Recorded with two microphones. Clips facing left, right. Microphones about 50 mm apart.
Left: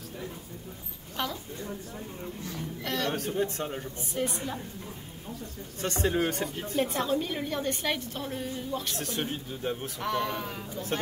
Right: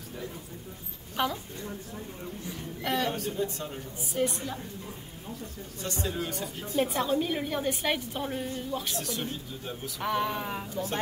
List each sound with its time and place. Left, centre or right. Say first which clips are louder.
1.1 s a woman's voice: right 4 dB; centre
2.4 s a woman's voice: right 3 dB; centre
3.3 s speech: left 2 dB; left
4.2 s a woman's voice: right 2 dB; centre
5.8 s speech: left 6 dB; left
6.8 s a woman's voice: right 1 dB; centre
8.9 s speech: left 1 dB; left
10.0 s a woman's voice: right 1 dB; centre